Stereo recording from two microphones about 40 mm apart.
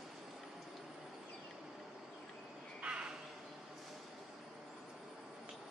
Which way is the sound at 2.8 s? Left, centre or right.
Right.